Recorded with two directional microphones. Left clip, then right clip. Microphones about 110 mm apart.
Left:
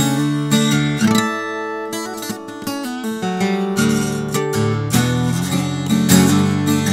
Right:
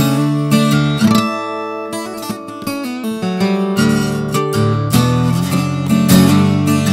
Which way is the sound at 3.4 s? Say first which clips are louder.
Right 3 dB; 30° right (ahead or behind).